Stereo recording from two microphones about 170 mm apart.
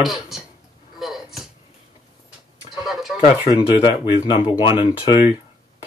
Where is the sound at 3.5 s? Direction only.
25° left (ahead or behind).